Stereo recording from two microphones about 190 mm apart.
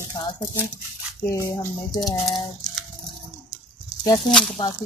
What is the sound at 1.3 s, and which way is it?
Speech, 15° left (ahead or behind).